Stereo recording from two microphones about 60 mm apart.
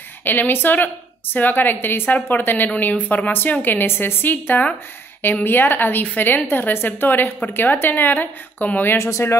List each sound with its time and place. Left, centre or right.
0.2 s a woman's voice: left
8.9 s speech: left